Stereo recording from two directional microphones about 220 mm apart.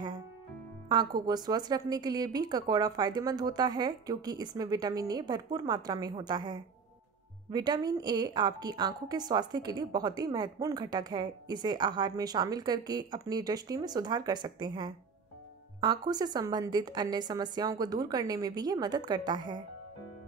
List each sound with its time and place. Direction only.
1.2 s a woman's voice: 20° right (ahead or behind)